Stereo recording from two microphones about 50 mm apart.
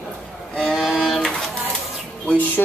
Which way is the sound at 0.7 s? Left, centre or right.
Centre.